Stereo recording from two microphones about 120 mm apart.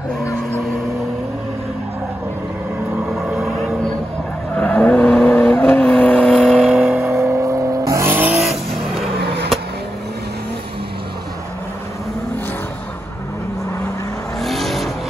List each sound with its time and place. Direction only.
3.1 s music: centre (ahead or behind)
4.6 s vehicle: 10° left (ahead or behind)
7.0 s vehicle: 25° right (ahead or behind)
8.4 s vehicle: centre (ahead or behind)
14.4 s vehicle: centre (ahead or behind)